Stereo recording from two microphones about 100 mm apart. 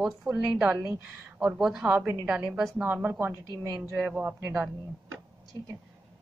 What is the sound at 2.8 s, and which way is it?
Speech, 20° right (ahead or behind).